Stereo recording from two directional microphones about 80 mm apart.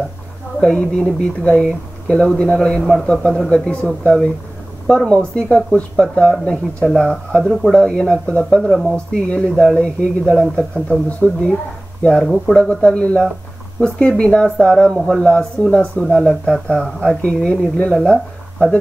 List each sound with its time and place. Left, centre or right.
0.6 s speech: centre
8.6 s speech: centre
8.9 s speech: centre
12.3 s speech: centre
12.6 s speech: centre